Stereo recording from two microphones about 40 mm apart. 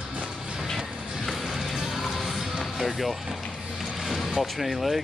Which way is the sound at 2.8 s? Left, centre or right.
Centre.